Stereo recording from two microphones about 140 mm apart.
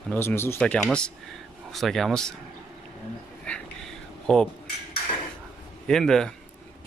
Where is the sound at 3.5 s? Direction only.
10° left (ahead or behind).